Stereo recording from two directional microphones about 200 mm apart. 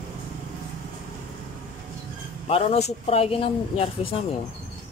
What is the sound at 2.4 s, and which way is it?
Speech, 30° left (ahead or behind).